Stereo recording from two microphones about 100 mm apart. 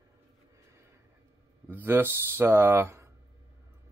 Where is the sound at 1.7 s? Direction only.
20° right (ahead or behind).